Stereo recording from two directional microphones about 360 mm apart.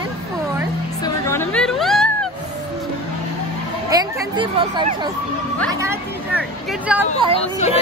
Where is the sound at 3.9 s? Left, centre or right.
Centre.